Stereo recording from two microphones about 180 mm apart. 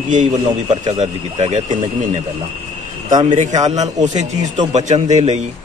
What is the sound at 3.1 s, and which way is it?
Speech, 30° right (ahead or behind).